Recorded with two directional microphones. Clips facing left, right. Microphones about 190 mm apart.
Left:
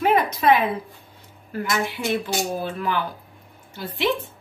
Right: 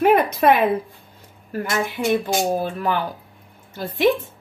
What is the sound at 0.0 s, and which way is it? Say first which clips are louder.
Speech: right 4 dB; 55° right (ahead or behind).